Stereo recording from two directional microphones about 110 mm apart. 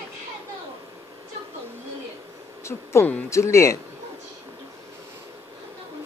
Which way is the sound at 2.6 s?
25° left (ahead or behind).